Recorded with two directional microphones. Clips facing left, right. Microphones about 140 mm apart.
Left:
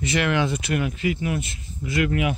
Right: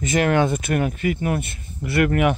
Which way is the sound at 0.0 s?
45° right (ahead or behind).